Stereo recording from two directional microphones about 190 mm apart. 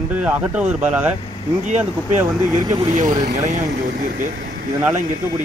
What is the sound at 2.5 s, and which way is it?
Speech, 20° right (ahead or behind).